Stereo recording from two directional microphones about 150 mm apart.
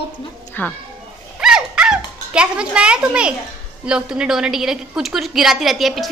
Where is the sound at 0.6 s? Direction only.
10° left (ahead or behind).